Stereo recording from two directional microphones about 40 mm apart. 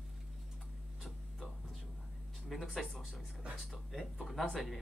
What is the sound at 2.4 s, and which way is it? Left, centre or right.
Speech, centre.